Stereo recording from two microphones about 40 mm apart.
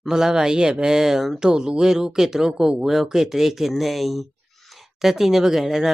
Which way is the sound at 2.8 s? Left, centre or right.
Centre.